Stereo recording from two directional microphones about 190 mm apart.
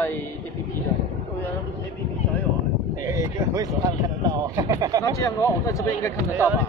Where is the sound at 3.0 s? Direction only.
15° right (ahead or behind).